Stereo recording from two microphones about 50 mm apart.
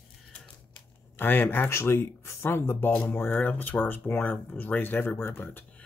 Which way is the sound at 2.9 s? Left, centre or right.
Left.